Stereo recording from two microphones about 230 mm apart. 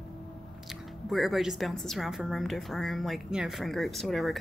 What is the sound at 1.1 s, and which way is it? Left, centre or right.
A woman's voice, centre.